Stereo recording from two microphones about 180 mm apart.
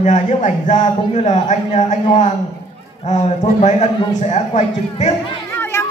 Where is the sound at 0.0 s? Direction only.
45° left (ahead or behind).